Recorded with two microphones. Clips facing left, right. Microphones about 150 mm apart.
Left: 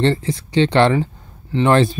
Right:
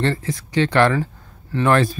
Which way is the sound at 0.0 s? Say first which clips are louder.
Left 4 dB; 25° left (ahead or behind).